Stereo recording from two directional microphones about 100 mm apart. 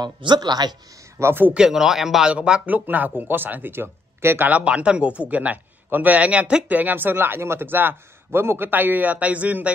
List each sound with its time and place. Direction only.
0.0 s speech: 45° right (ahead or behind)
1.2 s speech: 20° right (ahead or behind)
1.6 s speech: 5° right (ahead or behind)